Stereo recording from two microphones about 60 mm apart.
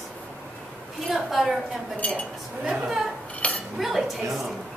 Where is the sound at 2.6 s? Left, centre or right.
Centre.